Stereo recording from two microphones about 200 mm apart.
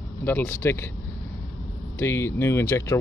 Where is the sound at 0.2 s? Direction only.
10° left (ahead or behind).